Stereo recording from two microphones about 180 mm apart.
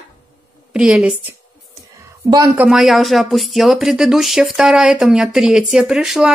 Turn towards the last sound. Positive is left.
turn(degrees=-5)  # may be behind; listen again after turning